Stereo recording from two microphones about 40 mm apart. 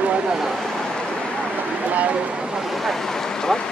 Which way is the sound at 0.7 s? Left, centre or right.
Centre.